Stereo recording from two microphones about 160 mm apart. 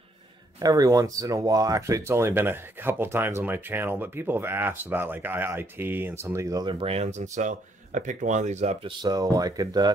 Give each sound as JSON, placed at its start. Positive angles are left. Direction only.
{"t": 0.6, "sound": "speech", "side_deg": -20}
{"t": 8.8, "sound": "speech", "side_deg": -25}